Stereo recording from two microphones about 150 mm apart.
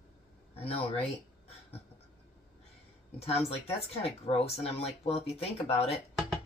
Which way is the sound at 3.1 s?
40° left (ahead or behind).